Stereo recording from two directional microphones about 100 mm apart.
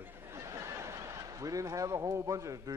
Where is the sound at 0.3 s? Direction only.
30° right (ahead or behind).